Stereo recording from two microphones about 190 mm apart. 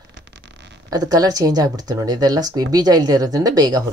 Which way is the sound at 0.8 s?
20° right (ahead or behind).